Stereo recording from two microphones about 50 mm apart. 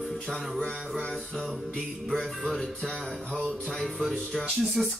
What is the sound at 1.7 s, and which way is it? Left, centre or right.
Music, centre.